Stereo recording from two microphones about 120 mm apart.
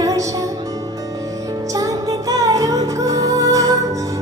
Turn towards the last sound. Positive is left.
turn(degrees=-30)  # may be behind; listen again after turning